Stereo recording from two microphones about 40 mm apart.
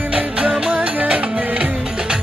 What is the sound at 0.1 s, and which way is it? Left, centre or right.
Music, right.